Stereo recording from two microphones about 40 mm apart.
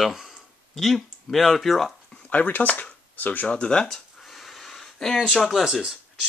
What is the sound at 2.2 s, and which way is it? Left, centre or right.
Speech, left.